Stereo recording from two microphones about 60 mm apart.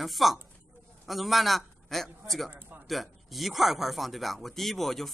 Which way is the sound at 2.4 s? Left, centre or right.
Right.